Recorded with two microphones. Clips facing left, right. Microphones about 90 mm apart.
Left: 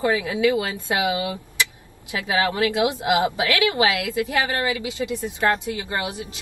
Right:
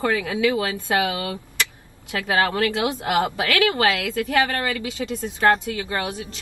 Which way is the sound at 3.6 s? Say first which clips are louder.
Right 1 dB; 60° right (ahead or behind).